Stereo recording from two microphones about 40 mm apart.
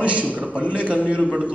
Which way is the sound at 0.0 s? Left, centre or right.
Right.